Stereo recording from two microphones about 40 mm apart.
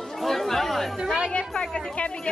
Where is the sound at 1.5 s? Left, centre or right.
Left.